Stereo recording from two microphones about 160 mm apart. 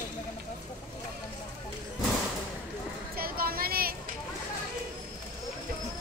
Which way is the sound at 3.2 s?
70° right (ahead or behind).